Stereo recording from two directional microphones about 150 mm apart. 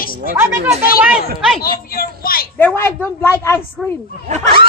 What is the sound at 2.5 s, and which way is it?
A woman's voice, 15° left (ahead or behind).